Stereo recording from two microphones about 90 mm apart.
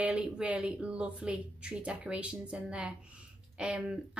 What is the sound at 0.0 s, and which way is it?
A woman's voice, 10° right (ahead or behind).